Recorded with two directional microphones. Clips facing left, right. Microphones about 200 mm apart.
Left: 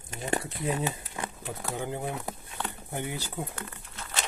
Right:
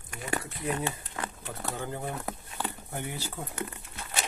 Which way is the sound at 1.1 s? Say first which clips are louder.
Left 1 dB; 15° left (ahead or behind).